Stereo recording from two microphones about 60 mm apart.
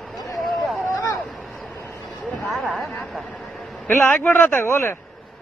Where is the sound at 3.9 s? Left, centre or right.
Left.